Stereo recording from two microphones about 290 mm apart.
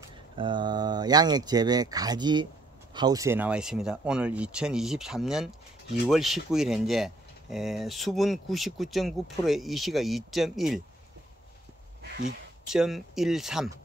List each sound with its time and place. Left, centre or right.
0.0 s speech: centre
12.0 s a sound: right
12.6 s speech: centre